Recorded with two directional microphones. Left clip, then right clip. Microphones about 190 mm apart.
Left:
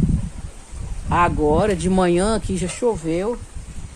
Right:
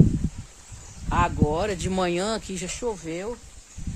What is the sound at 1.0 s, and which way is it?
Speech, 25° right (ahead or behind).